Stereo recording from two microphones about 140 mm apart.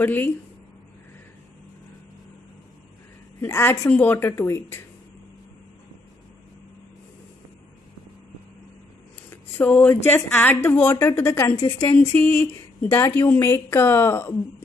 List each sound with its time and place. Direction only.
0.0 s a woman's voice: 15° left (ahead or behind)
3.3 s a woman's voice: 20° left (ahead or behind)
9.3 s a sound: 15° left (ahead or behind)
10.0 s a woman's voice: 15° left (ahead or behind)